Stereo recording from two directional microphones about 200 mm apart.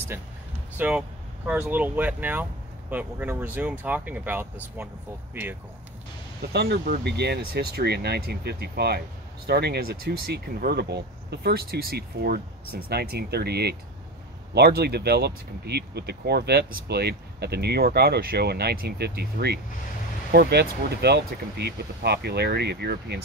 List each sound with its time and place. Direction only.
0.7 s speech: 5° right (ahead or behind)
6.5 s speech: 55° right (ahead or behind)